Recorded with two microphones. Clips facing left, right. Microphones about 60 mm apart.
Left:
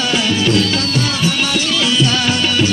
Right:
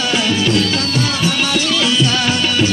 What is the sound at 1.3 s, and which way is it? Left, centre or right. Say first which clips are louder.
Music: even; right.